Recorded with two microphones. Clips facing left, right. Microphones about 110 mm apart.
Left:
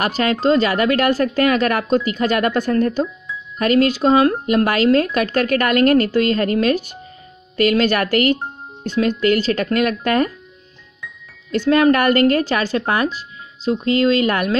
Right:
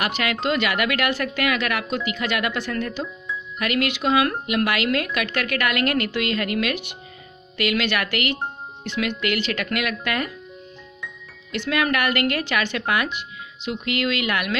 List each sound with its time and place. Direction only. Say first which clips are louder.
0.0 s speech: left 7 dB; 40° left (ahead or behind)
11.5 s speech: left 9 dB; 40° left (ahead or behind)